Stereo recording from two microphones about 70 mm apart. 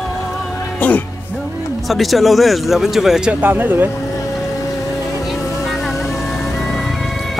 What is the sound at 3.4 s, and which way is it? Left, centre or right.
Speech, right.